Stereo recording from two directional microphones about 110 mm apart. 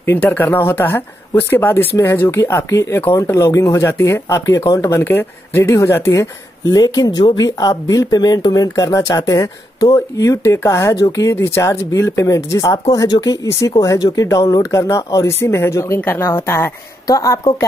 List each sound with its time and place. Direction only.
0.0 s speech: 15° left (ahead or behind)
6.7 s speech: 35° left (ahead or behind)